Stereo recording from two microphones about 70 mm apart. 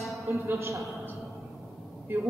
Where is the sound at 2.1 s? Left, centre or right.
Right.